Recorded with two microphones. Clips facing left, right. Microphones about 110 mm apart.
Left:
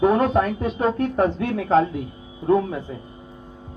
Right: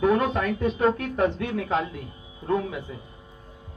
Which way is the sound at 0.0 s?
35° left (ahead or behind).